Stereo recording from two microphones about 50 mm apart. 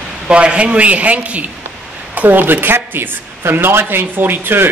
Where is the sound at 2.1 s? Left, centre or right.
Right.